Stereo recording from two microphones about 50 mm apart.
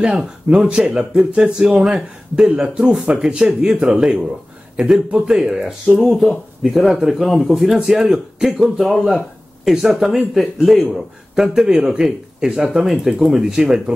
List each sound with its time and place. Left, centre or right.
0.0 s speech: centre
6.0 s speech: centre